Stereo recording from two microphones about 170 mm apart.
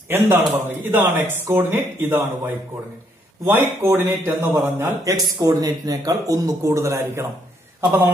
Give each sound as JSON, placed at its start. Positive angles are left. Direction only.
{"t": 0.1, "sound": "speech", "side_deg": -10}